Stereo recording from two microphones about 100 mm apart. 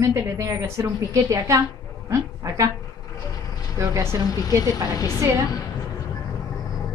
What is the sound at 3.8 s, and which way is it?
Speech, 30° right (ahead or behind).